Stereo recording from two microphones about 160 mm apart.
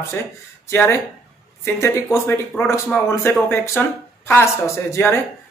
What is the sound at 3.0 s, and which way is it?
Speech, 15° left (ahead or behind).